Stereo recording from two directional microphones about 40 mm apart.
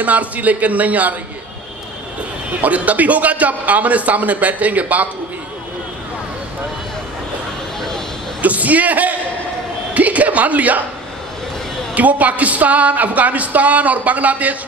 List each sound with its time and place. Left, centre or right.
0.0 s speech: right
2.6 s speech: right
8.4 s speech: right
11.9 s speech: right